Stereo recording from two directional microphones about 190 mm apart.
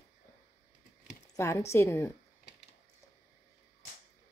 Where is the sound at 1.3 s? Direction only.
15° left (ahead or behind).